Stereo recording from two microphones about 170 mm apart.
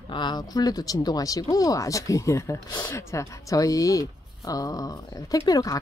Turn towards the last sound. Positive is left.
turn(degrees=20)  # may be behind; listen again after turning